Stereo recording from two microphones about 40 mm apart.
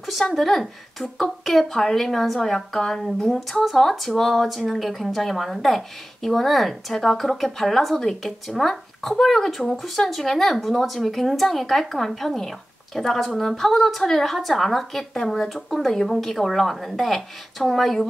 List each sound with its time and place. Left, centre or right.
0.0 s a woman's voice: centre